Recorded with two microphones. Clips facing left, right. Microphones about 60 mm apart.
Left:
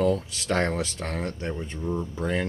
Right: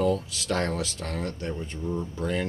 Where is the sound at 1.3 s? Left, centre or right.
Centre.